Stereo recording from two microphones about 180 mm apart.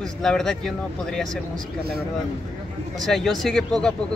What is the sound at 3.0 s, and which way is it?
Speech, centre (ahead or behind).